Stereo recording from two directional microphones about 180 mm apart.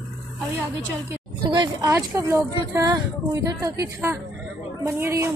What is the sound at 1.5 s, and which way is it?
Speech, 20° right (ahead or behind).